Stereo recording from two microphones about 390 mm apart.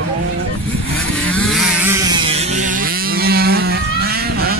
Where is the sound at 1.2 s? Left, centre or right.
Centre; by 4.6 s right.